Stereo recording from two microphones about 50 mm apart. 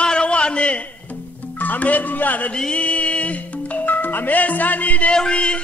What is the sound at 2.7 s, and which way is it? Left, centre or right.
Music, left.